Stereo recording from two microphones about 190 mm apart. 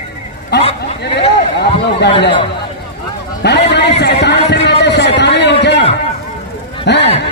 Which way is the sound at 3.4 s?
65° left (ahead or behind).